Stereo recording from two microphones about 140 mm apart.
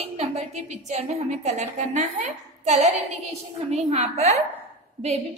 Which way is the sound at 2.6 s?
55° right (ahead or behind).